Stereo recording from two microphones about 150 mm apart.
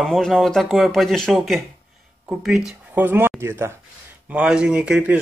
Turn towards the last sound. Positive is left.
turn(degrees=-5)  # may be behind; listen again after turning